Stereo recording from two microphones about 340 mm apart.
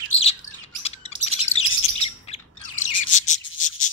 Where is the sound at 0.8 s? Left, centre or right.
Centre.